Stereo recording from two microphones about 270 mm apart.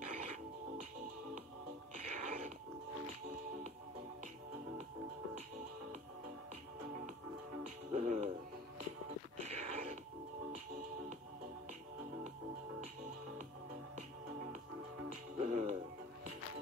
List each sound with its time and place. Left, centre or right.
0.2 s music: right
2.0 s music: right
7.9 s music: right
9.4 s a sound: right
13.9 s music: right